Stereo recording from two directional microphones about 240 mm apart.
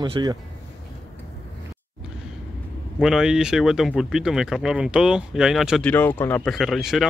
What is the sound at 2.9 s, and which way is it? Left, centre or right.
Speech, centre.